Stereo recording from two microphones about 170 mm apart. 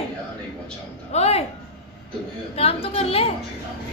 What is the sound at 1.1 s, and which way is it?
Speech, 40° left (ahead or behind).